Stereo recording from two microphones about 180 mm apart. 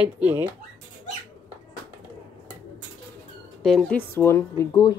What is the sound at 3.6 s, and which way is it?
Speech, 5° left (ahead or behind).